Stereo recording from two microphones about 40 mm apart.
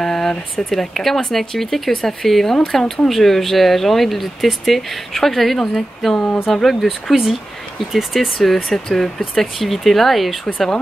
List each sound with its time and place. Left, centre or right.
0.0 s a sound: centre
0.7 s speech: centre
6.1 s speech: left
6.4 s speech: centre
8.6 s speech: centre